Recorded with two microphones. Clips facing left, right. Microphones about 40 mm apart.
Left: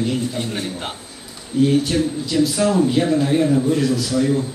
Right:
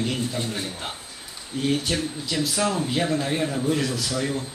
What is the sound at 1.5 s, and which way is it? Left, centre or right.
Speech, centre.